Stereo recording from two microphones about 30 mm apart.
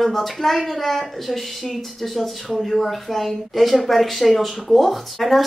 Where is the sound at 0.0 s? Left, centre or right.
Centre.